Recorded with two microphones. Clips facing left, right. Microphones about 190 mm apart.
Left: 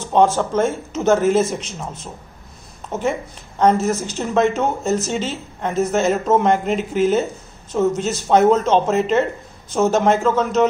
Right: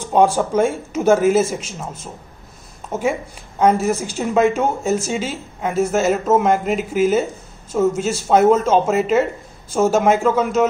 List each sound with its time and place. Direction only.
0.0 s a woman's voice: 10° right (ahead or behind)
2.9 s a woman's voice: 10° right (ahead or behind)